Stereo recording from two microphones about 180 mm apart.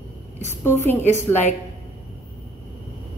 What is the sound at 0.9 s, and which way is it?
Speech, 15° left (ahead or behind).